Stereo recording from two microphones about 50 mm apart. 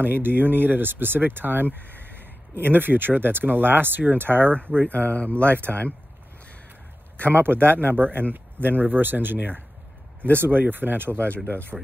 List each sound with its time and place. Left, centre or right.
0.0 s speech: right
4.7 s speech: left
5.5 s speech: right
7.2 s speech: right
11.2 s speech: left